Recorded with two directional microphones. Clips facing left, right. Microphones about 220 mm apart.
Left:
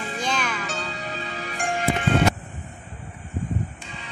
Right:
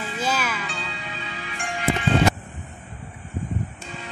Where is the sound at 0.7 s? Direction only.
40° left (ahead or behind).